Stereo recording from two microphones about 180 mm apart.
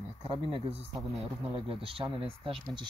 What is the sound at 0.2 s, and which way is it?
Speech, 30° right (ahead or behind).